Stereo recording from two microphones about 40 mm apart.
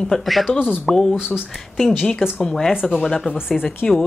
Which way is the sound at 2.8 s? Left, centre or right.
Centre.